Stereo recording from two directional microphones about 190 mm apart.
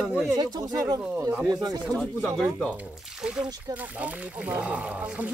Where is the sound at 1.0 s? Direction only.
5° right (ahead or behind).